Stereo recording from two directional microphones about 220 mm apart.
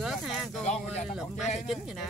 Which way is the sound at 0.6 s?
30° left (ahead or behind).